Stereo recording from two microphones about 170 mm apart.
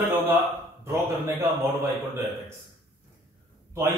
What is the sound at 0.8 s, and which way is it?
Speech, 20° right (ahead or behind).